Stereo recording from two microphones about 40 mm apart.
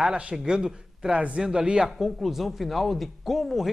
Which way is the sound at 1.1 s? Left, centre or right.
Right.